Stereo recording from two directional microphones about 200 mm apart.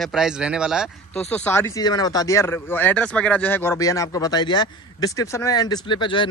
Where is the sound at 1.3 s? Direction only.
10° left (ahead or behind).